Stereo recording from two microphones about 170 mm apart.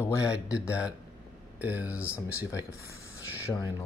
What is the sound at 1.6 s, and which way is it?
Speech, 10° right (ahead or behind).